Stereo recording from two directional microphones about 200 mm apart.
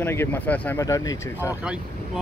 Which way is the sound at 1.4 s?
5° right (ahead or behind).